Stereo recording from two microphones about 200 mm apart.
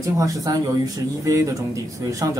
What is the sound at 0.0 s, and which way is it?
Speech, 15° right (ahead or behind).